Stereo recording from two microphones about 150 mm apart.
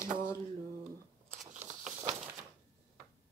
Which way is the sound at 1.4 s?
55° right (ahead or behind).